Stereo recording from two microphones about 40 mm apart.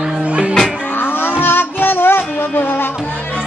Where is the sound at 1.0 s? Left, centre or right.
Left.